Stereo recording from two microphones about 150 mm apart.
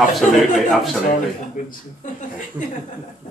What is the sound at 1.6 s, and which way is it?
Speech, 60° left (ahead or behind).